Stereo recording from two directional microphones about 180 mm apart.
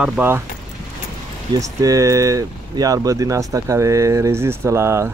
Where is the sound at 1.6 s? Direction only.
20° right (ahead or behind).